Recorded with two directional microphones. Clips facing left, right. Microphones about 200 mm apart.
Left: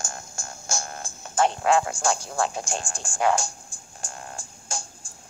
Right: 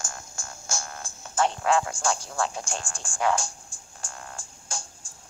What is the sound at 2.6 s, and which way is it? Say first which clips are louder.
Speech: left 3 dB; 20° left (ahead or behind).